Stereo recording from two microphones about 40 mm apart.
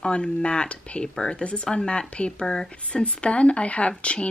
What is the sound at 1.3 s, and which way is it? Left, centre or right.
Speech, left.